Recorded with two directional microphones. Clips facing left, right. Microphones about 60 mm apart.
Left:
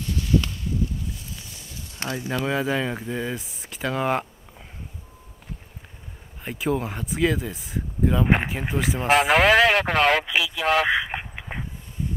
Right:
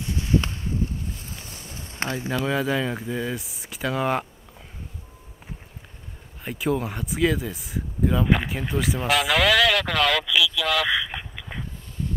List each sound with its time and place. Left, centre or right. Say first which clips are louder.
0.0 s boat: even; right
2.4 s speech: even; centre
6.4 s speech: even; centre
9.0 s speech: left 4 dB; left